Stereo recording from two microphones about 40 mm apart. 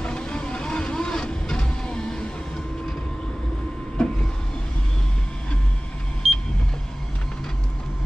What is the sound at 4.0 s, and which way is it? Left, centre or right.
Vehicle, centre.